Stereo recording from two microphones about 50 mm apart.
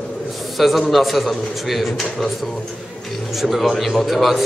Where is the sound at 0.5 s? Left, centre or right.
Centre.